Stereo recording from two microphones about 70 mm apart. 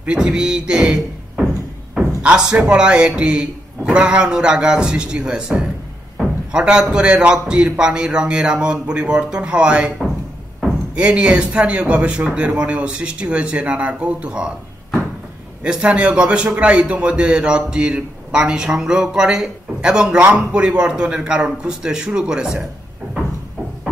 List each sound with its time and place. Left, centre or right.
0.0 s a man's voice: centre
11.0 s a man's voice: centre
15.6 s a man's voice: centre